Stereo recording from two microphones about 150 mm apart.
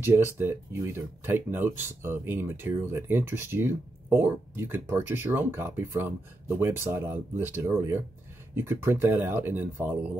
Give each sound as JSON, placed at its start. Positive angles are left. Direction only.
{"t": 0.0, "sound": "speech", "side_deg": -15}